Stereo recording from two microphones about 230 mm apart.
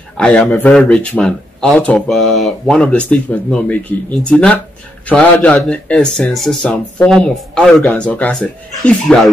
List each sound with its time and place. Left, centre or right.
0.2 s speech: centre